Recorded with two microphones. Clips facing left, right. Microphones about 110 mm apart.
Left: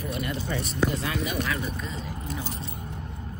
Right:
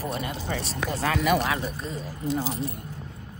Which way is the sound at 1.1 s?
60° right (ahead or behind).